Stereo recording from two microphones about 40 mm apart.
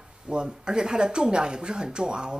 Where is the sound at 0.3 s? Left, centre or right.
Right.